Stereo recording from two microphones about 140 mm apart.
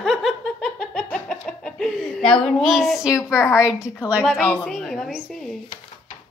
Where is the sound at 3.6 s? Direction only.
5° right (ahead or behind).